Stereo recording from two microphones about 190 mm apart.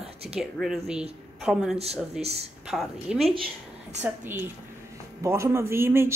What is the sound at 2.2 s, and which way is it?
Speech, 35° right (ahead or behind).